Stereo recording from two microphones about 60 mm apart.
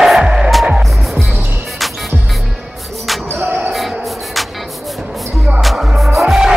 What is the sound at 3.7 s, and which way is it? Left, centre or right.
Music, centre.